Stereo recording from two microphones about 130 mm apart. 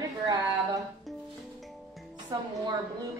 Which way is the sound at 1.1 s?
Centre (ahead or behind).